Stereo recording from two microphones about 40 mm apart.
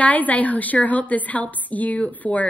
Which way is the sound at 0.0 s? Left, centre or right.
Left.